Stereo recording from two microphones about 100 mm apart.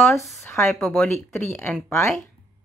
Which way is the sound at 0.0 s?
Centre (ahead or behind).